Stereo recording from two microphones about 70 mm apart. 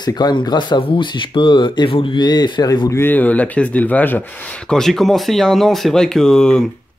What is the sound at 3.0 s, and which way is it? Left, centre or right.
Speech, left.